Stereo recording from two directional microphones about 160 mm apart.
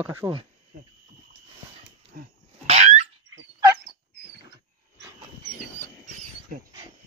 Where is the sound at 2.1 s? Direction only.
65° right (ahead or behind).